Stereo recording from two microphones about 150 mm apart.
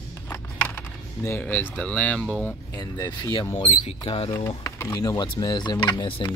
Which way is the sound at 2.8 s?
25° left (ahead or behind).